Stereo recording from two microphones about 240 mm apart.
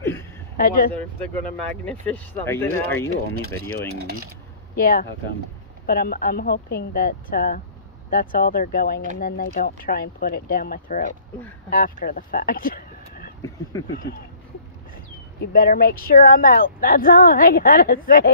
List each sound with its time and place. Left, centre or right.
0.6 s speech: left
1.9 s speech: centre
4.0 s speech: right
4.7 s speech: left
15.4 s speech: left